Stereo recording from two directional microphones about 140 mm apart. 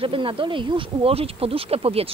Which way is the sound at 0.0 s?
40° right (ahead or behind).